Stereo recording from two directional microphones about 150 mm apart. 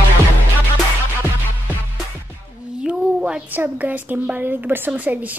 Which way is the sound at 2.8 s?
5° right (ahead or behind).